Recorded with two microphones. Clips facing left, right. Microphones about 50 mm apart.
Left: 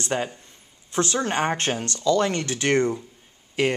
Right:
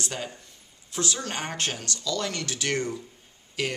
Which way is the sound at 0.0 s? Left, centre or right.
Left.